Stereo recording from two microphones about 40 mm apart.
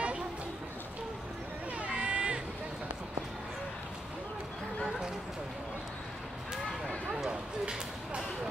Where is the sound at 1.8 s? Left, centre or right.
Right.